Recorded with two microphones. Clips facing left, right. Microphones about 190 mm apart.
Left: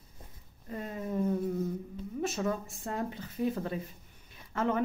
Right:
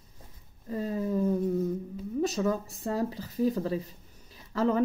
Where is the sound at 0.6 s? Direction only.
30° right (ahead or behind).